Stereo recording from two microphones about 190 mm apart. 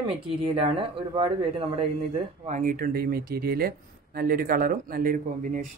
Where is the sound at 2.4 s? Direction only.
40° right (ahead or behind).